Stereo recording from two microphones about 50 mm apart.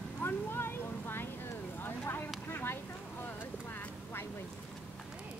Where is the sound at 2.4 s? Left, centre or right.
Left.